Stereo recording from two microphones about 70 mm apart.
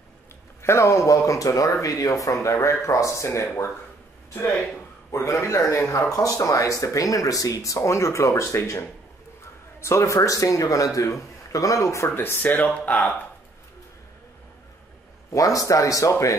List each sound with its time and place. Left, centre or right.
0.6 s speech: left
5.1 s a man's voice: left
12.2 s speech: left
12.6 s speech: centre
15.3 s speech: left